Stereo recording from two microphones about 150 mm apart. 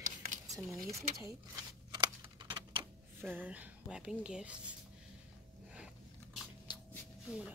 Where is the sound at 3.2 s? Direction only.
10° right (ahead or behind).